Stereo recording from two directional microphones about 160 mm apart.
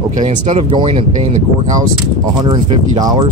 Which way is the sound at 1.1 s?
40° right (ahead or behind).